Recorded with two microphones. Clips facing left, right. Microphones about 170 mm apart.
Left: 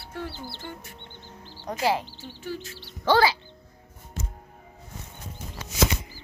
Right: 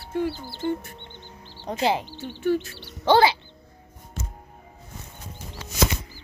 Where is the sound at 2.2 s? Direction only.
65° right (ahead or behind).